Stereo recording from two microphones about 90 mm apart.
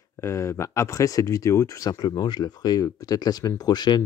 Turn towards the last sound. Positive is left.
turn(degrees=50)  # may be behind; listen again after turning